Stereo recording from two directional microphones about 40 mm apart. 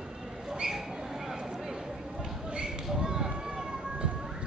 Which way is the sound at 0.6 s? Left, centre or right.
Centre.